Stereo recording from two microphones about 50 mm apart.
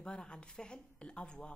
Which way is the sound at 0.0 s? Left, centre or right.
Centre.